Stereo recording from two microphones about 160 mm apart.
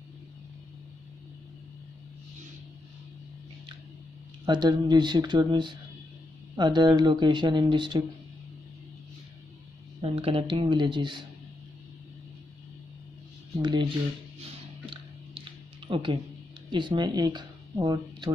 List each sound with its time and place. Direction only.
4.5 s speech: 25° right (ahead or behind)
10.0 s speech: 35° right (ahead or behind)
13.6 s speech: 30° right (ahead or behind)
15.9 s speech: 30° right (ahead or behind)